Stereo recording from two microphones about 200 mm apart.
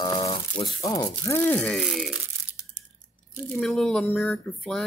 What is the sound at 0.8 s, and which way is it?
Speech, 15° left (ahead or behind).